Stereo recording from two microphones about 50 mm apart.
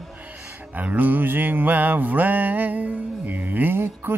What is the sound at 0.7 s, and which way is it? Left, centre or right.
Music, right.